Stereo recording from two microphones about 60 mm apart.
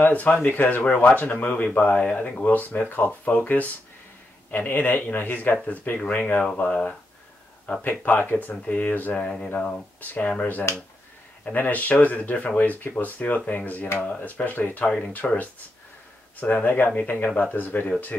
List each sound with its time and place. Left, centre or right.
0.0 s speech: left
13.9 s speech: centre
14.2 s speech: left